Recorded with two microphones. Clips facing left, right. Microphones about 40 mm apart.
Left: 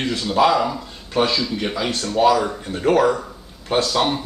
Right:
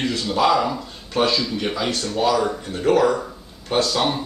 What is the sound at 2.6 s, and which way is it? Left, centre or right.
Speech, centre.